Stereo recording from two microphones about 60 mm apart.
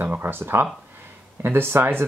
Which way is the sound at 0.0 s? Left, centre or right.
Right.